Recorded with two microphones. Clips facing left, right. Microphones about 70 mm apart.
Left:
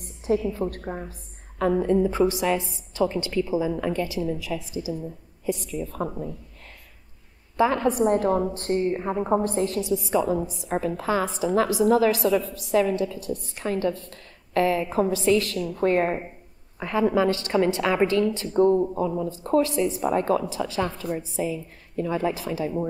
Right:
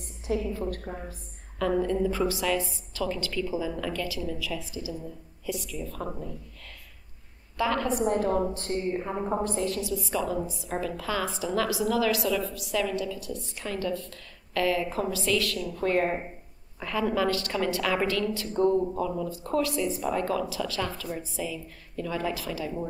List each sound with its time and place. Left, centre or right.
0.3 s a woman's voice: left
1.6 s a woman's voice: left
7.5 s a woman's voice: left
7.9 s a woman's voice: left
16.8 s a woman's voice: left